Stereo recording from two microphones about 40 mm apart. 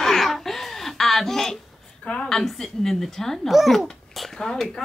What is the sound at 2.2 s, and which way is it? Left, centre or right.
Speech, centre.